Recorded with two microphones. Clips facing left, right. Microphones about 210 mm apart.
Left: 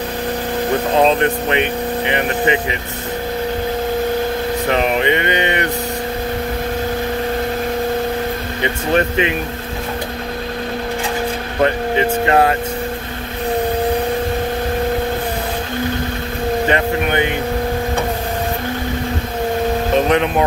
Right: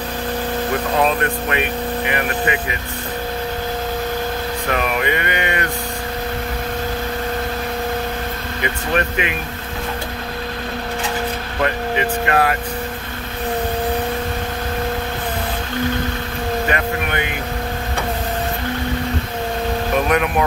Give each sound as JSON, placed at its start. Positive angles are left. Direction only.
{"t": 0.9, "sound": "speech", "side_deg": 25}
{"t": 4.6, "sound": "speech", "side_deg": 25}
{"t": 8.6, "sound": "speech", "side_deg": 25}
{"t": 11.6, "sound": "speech", "side_deg": 25}
{"t": 16.6, "sound": "vehicle", "side_deg": 25}
{"t": 20.1, "sound": "speech", "side_deg": 25}